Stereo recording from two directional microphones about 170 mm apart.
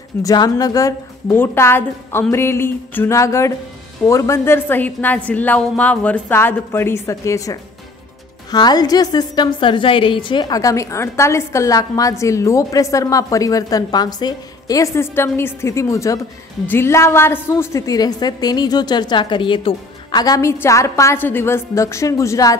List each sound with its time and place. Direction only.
0.2 s a woman's voice: 20° left (ahead or behind)